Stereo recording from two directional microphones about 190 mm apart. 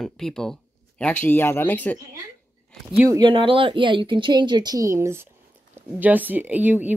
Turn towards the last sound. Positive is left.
turn(degrees=-10)  # may be behind; listen again after turning